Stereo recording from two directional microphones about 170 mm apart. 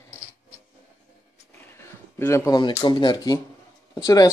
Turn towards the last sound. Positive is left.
turn(degrees=20)  # may be behind; listen again after turning